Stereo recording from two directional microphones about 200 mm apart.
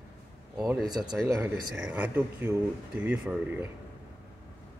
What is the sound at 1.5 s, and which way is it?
Speech, 5° right (ahead or behind).